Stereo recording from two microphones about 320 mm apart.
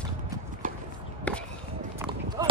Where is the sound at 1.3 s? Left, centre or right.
Centre.